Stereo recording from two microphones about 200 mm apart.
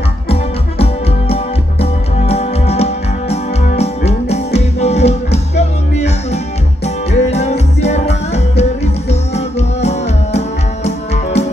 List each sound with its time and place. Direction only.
1.3 s music: 30° left (ahead or behind)